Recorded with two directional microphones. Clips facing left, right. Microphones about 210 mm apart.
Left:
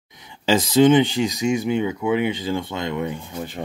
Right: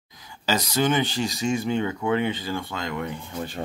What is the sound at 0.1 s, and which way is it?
Speech, 25° left (ahead or behind).